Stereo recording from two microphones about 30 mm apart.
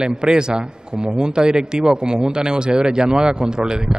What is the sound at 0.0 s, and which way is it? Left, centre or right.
A man's voice, right.